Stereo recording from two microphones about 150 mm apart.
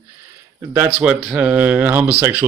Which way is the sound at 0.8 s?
5° right (ahead or behind).